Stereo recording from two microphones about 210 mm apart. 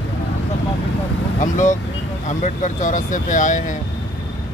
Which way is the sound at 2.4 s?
35° left (ahead or behind).